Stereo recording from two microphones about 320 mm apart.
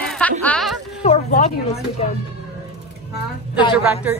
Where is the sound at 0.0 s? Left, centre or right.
Centre.